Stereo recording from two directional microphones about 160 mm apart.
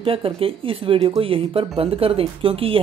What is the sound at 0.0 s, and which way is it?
Speech, 35° right (ahead or behind).